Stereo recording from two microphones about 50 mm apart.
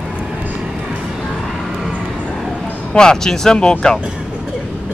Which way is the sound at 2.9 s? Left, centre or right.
Centre.